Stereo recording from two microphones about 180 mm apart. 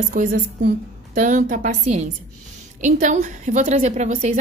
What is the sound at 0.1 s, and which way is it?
A woman's voice, 50° right (ahead or behind).